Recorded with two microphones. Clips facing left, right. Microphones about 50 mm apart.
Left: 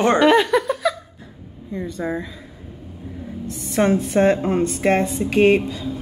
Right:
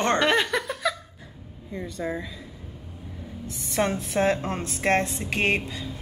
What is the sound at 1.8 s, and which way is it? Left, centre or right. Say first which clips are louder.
Speech: left 5 dB; centre.